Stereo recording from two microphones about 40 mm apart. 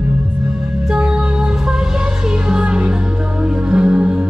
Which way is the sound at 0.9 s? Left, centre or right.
Right.